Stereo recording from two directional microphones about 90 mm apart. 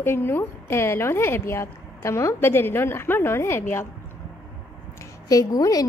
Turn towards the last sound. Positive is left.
turn(degrees=45)  # may be behind; listen again after turning